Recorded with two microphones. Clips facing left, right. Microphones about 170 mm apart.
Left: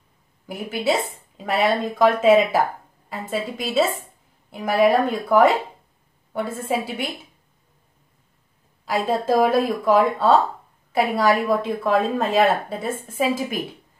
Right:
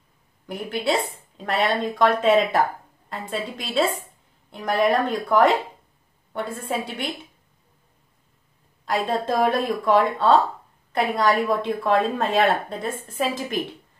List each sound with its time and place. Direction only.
0.5 s a woman's voice: 5° left (ahead or behind)
8.8 s a woman's voice: 5° left (ahead or behind)